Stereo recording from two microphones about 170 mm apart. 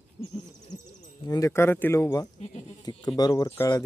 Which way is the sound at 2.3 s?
45° left (ahead or behind).